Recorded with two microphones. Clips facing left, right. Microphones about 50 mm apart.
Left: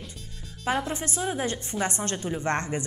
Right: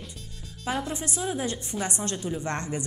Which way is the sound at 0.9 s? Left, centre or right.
Left.